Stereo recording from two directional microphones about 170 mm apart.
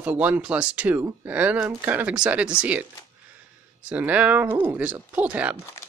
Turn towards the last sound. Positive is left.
turn(degrees=-10)  # may be behind; listen again after turning